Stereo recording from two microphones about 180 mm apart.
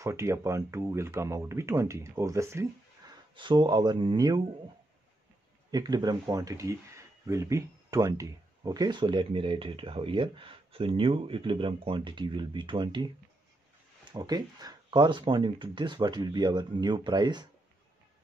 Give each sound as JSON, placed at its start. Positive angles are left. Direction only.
{"t": 0.0, "sound": "speech", "side_deg": -15}
{"t": 3.3, "sound": "speech", "side_deg": -25}
{"t": 5.7, "sound": "speech", "side_deg": -20}
{"t": 14.1, "sound": "speech", "side_deg": -20}